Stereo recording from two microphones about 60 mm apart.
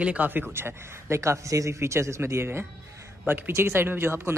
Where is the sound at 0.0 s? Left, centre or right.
Right.